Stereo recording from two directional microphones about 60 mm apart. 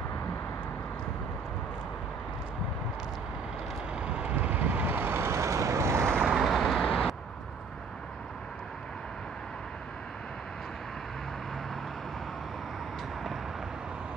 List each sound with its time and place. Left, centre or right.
3.9 s vehicle: centre; by 6.0 s right
6.2 s vehicle: centre
6.8 s vehicle: centre